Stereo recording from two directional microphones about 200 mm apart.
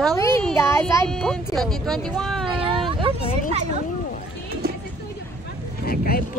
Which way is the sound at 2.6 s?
25° right (ahead or behind).